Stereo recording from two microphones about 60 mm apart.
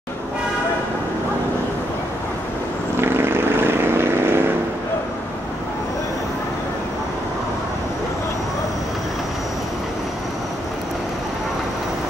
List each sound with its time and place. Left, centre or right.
3.0 s vehicle: right